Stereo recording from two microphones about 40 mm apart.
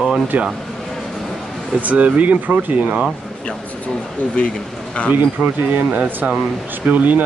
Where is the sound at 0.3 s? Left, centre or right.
Right.